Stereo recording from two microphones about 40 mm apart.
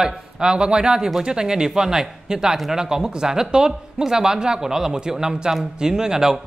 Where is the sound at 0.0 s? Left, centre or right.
Right.